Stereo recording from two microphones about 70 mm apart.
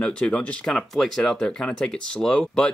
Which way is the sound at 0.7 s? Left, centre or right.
Centre.